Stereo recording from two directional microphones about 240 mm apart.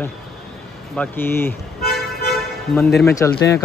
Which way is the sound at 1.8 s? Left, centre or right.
Left.